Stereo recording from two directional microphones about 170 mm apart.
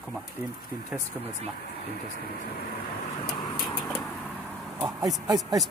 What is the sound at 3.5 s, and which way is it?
Vehicle, centre (ahead or behind).